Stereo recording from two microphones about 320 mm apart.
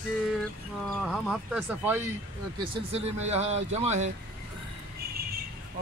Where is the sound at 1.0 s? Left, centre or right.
Centre.